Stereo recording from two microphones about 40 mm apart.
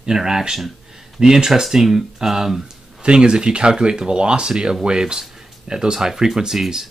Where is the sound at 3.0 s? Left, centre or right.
Right.